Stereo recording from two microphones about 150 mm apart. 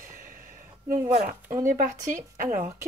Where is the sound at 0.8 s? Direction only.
65° right (ahead or behind).